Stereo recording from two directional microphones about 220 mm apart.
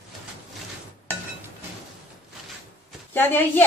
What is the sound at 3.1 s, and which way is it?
Speech, 10° left (ahead or behind).